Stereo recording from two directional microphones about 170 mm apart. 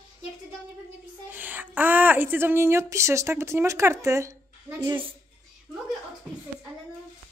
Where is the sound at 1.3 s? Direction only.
10° right (ahead or behind).